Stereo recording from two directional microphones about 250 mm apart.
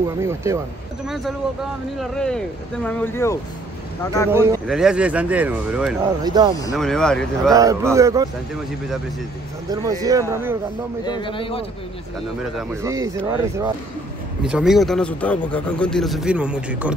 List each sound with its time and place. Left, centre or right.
0.2 s speech: centre
1.0 s speech: centre
4.3 s speech: centre
6.2 s speech: centre
6.7 s speech: centre
7.5 s speech: centre
9.7 s speech: centre
11.1 s a man's voice: centre
12.8 s speech: centre